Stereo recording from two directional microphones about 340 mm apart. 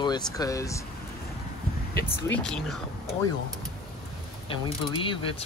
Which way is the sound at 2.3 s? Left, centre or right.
Centre.